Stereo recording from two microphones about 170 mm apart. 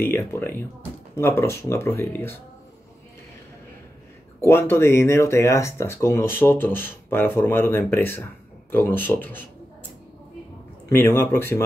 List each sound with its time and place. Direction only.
0.0 s speech: 15° left (ahead or behind)
4.4 s speech: 15° left (ahead or behind)
10.9 s speech: 15° left (ahead or behind)